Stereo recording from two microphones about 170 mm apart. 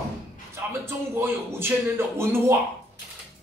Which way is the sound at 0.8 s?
15° right (ahead or behind).